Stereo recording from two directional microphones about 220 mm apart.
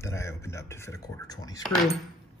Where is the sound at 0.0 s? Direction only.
10° left (ahead or behind).